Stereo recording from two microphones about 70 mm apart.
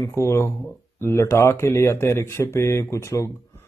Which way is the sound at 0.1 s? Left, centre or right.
Left.